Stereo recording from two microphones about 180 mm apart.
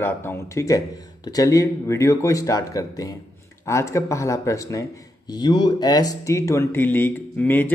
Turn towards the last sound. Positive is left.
turn(degrees=10)  # may be behind; listen again after turning